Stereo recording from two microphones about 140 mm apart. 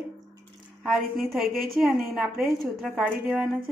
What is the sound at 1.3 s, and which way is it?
A woman's voice, centre (ahead or behind).